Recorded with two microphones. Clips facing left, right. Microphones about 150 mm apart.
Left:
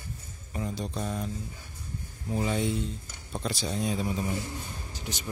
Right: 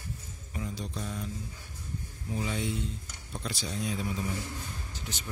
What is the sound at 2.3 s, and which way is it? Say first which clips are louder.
Speech: left 5 dB; 45° left (ahead or behind).